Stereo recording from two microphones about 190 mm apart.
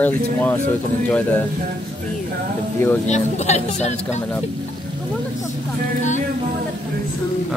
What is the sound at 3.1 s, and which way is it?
Speech, 35° left (ahead or behind).